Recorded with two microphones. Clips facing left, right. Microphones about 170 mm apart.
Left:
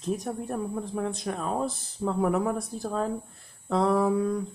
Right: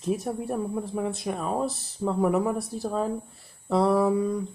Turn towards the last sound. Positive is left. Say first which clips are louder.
# right 1 dB
turn(degrees=0)  # may be behind; listen again after turning